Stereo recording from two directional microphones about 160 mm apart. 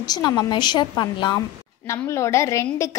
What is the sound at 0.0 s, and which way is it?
A woman's voice, 25° left (ahead or behind).